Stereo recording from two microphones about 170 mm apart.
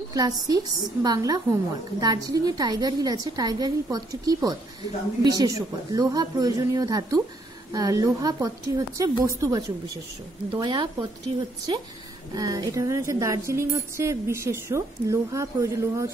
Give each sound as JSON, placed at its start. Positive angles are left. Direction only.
{"t": 0.1, "sound": "a woman's voice", "side_deg": -20}
{"t": 12.4, "sound": "a woman's voice", "side_deg": -20}